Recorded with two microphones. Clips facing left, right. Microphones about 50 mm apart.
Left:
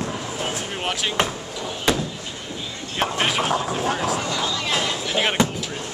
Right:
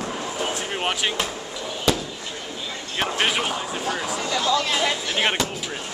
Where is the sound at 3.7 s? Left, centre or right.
Centre.